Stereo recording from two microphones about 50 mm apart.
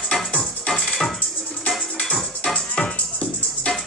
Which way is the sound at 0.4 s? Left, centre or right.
Centre.